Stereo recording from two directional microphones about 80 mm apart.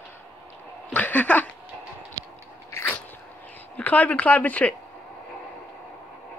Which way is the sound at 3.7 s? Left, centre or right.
Centre.